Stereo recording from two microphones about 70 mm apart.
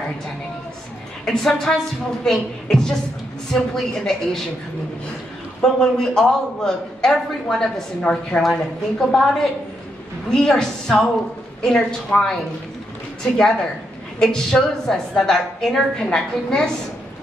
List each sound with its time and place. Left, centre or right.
1.2 s a man's voice: centre
5.6 s a man's voice: centre
14.2 s a man's voice: centre